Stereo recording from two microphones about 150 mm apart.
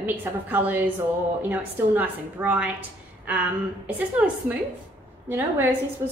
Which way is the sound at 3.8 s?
10° right (ahead or behind).